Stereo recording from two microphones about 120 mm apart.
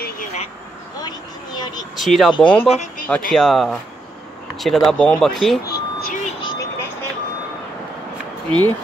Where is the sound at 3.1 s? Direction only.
5° left (ahead or behind).